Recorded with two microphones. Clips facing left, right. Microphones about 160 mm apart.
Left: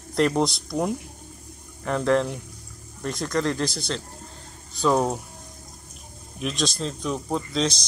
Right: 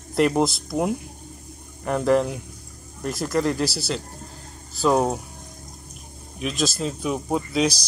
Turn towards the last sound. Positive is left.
turn(degrees=-10)  # may be behind; listen again after turning